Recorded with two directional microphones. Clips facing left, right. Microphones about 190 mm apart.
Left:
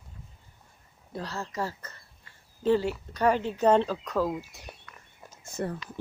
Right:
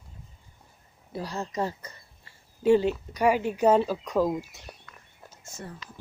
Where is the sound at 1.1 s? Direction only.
15° right (ahead or behind).